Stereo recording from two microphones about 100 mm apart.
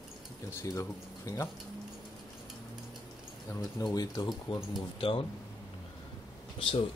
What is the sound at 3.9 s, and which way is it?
Speech, 40° left (ahead or behind).